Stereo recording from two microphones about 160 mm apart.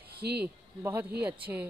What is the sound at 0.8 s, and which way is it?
Speech, 15° right (ahead or behind).